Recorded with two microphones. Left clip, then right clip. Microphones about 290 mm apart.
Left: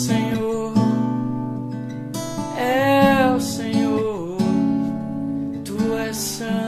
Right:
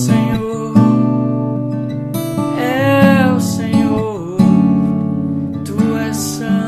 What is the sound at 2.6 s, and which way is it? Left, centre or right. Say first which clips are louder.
Music: right 3 dB; centre.